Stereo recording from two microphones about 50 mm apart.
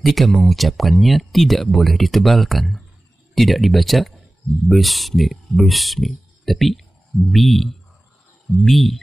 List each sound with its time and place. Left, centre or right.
0.0 s speech: centre